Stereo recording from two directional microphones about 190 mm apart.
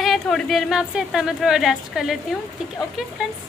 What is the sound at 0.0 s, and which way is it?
Speech, centre (ahead or behind).